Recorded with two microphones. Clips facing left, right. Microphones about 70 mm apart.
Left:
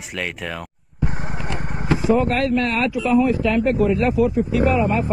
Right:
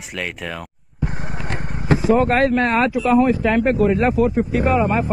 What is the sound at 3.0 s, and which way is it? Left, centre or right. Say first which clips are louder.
Speech: even; right.